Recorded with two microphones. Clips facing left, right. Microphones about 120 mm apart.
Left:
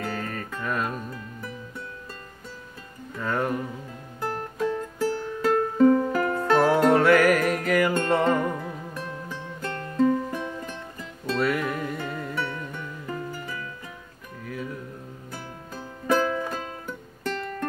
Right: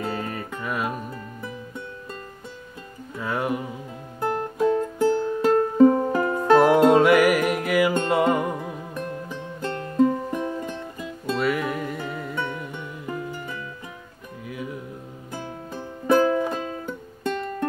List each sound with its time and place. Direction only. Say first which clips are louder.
0.1 s music: right 2 dB; 10° right (ahead or behind)
3.2 s music: even; 10° right (ahead or behind)
11.3 s music: right 1 dB; 5° right (ahead or behind)
12.4 s music: right 1 dB; 15° right (ahead or behind)